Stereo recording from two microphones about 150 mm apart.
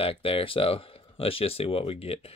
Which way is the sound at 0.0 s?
40° left (ahead or behind).